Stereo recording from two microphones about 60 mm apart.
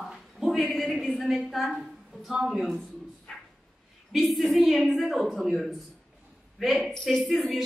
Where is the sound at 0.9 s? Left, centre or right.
Centre.